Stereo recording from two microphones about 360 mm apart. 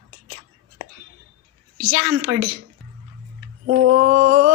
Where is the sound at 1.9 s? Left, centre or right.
Right.